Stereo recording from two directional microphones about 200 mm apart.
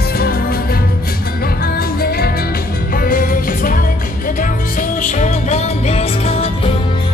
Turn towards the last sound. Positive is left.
turn(degrees=30)  # may be behind; listen again after turning